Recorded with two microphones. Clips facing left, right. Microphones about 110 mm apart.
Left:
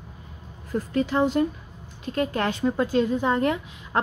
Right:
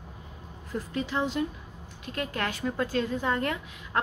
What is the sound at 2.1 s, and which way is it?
A woman's voice, 30° left (ahead or behind).